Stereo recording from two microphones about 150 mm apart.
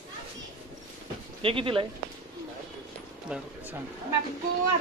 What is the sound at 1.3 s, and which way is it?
Speech, 35° right (ahead or behind).